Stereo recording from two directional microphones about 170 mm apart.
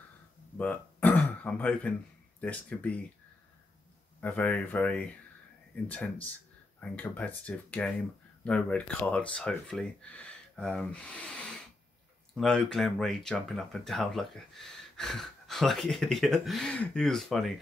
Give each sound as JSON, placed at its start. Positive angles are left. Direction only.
{"t": 0.6, "sound": "speech", "side_deg": 10}
{"t": 4.2, "sound": "speech", "side_deg": 10}